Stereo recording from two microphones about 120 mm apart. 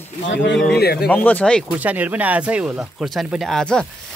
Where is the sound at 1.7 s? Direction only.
15° right (ahead or behind); by 3.8 s 5° left (ahead or behind).